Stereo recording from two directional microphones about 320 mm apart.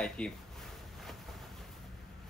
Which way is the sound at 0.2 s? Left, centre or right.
Centre.